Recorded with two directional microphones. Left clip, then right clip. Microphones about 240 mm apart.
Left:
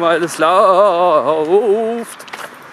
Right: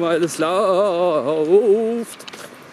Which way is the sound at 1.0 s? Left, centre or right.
Centre.